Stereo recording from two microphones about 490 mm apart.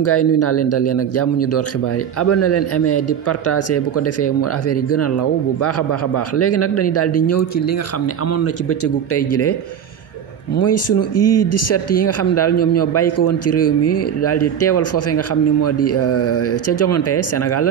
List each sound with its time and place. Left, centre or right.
0.0 s speech: left